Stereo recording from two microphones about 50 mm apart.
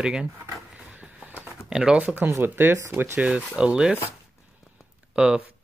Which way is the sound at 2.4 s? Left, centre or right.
Right.